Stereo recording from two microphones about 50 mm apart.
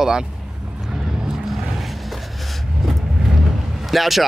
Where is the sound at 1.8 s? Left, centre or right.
Centre.